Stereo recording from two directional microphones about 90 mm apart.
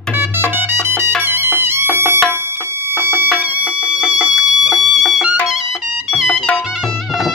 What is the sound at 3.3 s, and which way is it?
Music, 15° right (ahead or behind).